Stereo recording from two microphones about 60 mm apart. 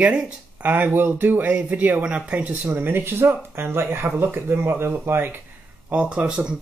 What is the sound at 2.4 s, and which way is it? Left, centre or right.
Speech, right.